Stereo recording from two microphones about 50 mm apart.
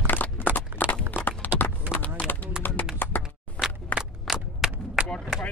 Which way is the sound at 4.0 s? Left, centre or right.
Centre.